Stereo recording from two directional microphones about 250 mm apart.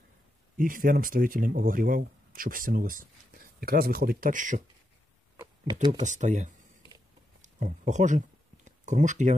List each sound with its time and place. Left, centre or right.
0.6 s speech: right
5.7 s speech: centre
5.9 s speech: right
8.6 s a sound: right